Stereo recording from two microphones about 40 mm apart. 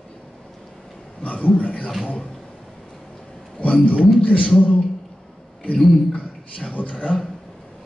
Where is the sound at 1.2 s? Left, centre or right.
Left.